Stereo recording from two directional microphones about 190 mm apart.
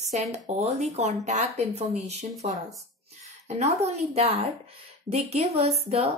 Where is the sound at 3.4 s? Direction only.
35° right (ahead or behind).